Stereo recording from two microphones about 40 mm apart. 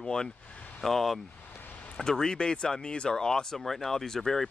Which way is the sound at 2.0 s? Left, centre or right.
Centre.